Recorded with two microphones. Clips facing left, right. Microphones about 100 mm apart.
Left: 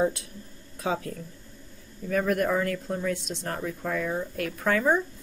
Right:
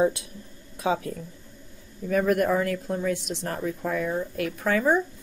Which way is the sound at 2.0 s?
15° right (ahead or behind).